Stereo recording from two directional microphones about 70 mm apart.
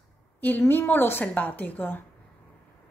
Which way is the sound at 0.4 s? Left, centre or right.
Left.